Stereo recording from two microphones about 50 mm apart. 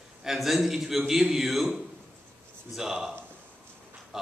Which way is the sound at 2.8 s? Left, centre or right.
Centre.